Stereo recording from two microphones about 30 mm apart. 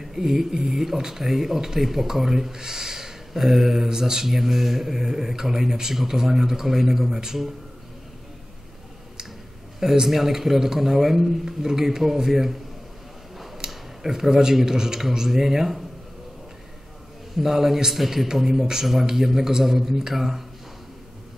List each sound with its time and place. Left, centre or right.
0.0 s speech: centre
2.5 s speech: centre
10.0 s speech: centre
13.7 s speech: centre
17.4 s speech: centre